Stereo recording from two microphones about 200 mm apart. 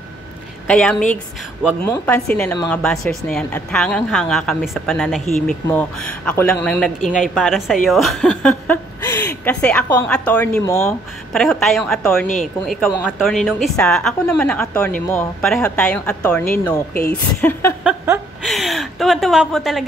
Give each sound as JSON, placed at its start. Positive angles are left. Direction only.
{"t": 0.7, "sound": "speech", "side_deg": 5}
{"t": 11.3, "sound": "speech", "side_deg": 0}
{"t": 17.8, "sound": "a sound", "side_deg": -15}
{"t": 18.4, "sound": "speech", "side_deg": 0}